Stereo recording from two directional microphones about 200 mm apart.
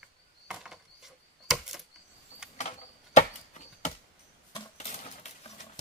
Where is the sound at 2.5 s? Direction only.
35° left (ahead or behind).